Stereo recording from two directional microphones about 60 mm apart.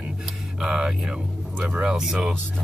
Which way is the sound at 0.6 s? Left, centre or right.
Centre.